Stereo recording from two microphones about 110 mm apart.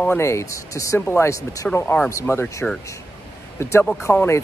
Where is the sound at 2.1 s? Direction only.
25° left (ahead or behind).